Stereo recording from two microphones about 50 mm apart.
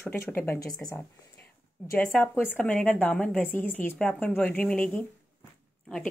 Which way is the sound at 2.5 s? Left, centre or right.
Left.